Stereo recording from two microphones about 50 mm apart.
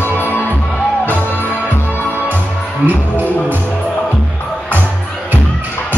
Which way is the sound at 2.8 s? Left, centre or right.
Right.